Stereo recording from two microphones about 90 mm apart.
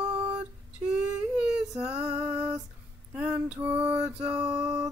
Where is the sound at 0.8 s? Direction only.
10° right (ahead or behind).